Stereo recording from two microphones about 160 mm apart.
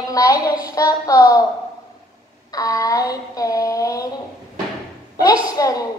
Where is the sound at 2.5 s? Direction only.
20° left (ahead or behind).